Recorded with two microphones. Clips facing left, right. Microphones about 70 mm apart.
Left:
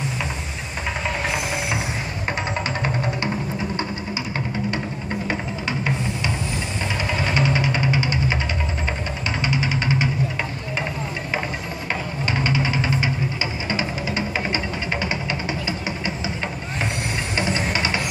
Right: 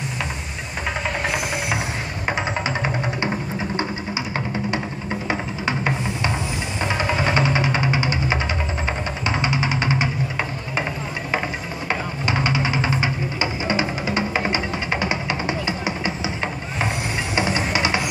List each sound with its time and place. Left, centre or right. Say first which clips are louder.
2.2 s music: right 3 dB; centre
5.7 s music: right 2 dB; right
12.4 s music: left 1 dB; right
17.4 s music: right 2 dB; centre